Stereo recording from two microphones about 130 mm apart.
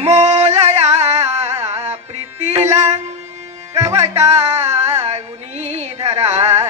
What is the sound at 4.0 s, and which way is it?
Music, 55° right (ahead or behind).